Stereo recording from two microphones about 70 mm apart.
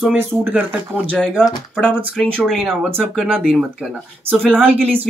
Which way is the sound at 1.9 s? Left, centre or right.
Right.